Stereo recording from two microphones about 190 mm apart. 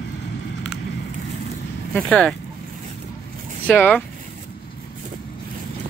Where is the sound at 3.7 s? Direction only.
10° left (ahead or behind).